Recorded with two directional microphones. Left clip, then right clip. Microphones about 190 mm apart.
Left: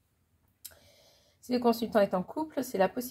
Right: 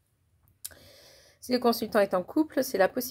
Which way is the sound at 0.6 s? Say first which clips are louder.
Right 6 dB; 40° right (ahead or behind).